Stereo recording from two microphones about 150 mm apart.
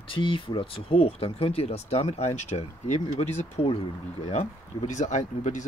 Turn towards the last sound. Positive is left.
turn(degrees=50)  # may be behind; listen again after turning